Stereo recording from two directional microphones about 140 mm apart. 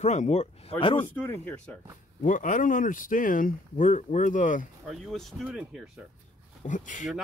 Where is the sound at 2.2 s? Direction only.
70° left (ahead or behind).